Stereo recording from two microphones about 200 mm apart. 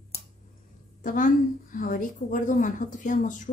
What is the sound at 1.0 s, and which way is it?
A woman's voice, 40° left (ahead or behind).